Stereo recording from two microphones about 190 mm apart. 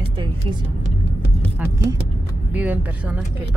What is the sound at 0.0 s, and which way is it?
Music, 25° right (ahead or behind).